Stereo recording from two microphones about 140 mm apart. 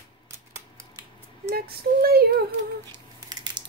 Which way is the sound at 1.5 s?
90° right.